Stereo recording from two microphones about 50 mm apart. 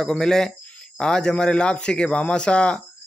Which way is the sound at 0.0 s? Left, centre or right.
Centre.